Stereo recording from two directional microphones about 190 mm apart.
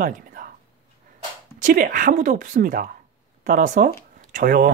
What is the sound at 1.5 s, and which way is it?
Speech, 45° right (ahead or behind).